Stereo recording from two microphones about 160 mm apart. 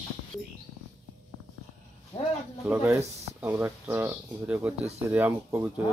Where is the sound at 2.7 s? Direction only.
10° right (ahead or behind).